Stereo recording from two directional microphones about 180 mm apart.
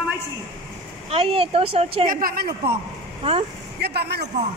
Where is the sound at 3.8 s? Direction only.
65° right (ahead or behind).